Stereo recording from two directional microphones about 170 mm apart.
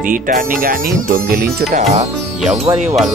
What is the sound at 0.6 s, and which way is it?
Speech, 60° right (ahead or behind).